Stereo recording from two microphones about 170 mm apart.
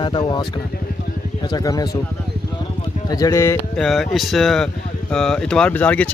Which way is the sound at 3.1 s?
20° left (ahead or behind).